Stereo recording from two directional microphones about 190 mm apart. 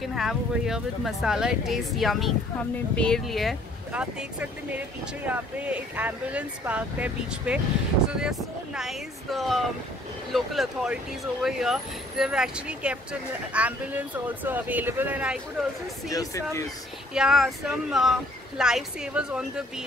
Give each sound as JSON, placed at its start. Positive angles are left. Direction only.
{"t": 0.0, "sound": "speech", "side_deg": 0}
{"t": 16.1, "sound": "speech", "side_deg": 15}
{"t": 17.1, "sound": "speech", "side_deg": -5}